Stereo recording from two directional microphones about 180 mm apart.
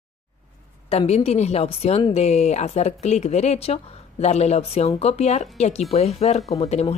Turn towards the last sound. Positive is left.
turn(degrees=35)  # may be behind; listen again after turning